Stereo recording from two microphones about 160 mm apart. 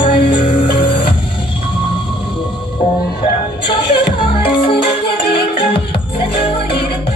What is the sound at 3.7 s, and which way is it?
Music, 35° left (ahead or behind).